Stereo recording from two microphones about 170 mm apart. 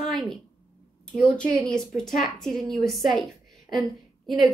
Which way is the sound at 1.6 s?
5° left (ahead or behind).